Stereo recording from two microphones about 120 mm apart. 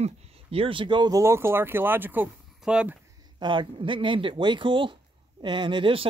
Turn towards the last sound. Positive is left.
turn(degrees=-45)  # may be behind; listen again after turning